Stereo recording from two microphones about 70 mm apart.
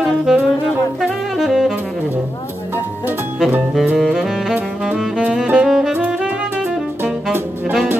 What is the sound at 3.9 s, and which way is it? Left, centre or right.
Music, centre.